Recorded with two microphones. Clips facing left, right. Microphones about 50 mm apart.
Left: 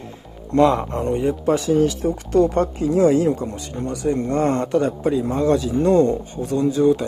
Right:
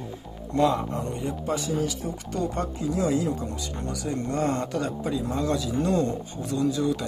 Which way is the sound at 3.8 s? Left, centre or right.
Left.